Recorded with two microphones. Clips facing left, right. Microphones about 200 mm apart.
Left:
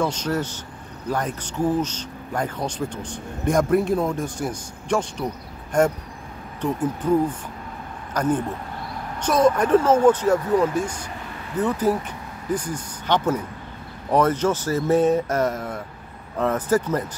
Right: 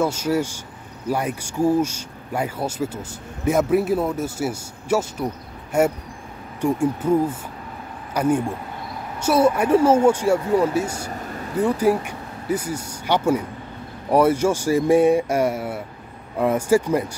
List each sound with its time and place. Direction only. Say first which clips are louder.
0.0 s speech: right 3 dB; 10° right (ahead or behind)
11.1 s a sound: right 4 dB; 40° right (ahead or behind)
11.5 s speech: right 3 dB; 10° right (ahead or behind)